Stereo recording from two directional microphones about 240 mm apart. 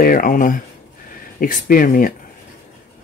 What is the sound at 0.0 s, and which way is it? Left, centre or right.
Speech, left.